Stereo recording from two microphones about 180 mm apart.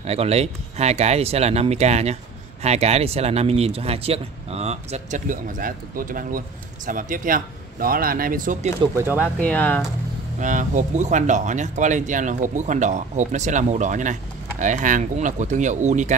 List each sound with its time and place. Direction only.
0.0 s speech: 35° right (ahead or behind)
9.2 s speech: 5° left (ahead or behind)
10.4 s speech: 45° right (ahead or behind)